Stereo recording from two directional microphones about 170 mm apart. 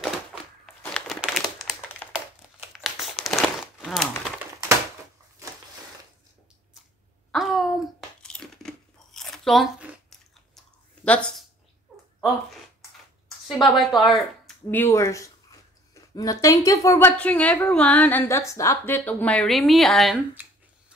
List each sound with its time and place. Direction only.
0.0 s crumpling: centre (ahead or behind)
7.3 s a sound: centre (ahead or behind)
8.2 s crunch: 5° left (ahead or behind)
11.1 s speech: 5° left (ahead or behind)
13.6 s a woman's voice: centre (ahead or behind)
14.7 s a woman's voice: 15° left (ahead or behind)